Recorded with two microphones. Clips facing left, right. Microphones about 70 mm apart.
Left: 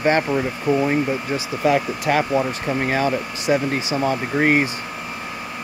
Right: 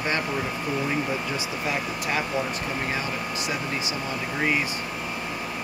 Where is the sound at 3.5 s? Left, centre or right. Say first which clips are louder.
Left 8 dB; left.